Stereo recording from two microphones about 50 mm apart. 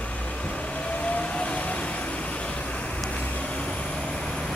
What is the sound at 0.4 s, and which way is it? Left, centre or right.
Vehicle, left.